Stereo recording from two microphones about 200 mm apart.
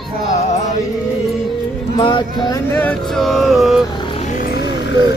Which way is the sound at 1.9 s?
25° left (ahead or behind).